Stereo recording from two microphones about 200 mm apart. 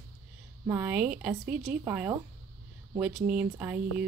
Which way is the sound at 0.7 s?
10° right (ahead or behind).